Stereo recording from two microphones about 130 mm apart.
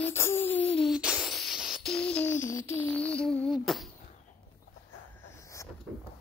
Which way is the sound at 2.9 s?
10° left (ahead or behind).